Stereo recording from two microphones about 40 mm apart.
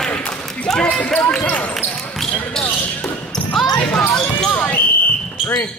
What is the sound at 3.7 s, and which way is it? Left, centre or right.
Basketball bounce, left.